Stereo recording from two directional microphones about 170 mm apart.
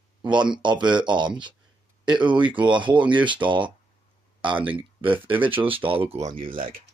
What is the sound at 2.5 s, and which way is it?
Speech, 30° right (ahead or behind).